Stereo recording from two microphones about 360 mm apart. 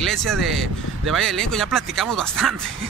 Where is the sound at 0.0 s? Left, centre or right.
Centre.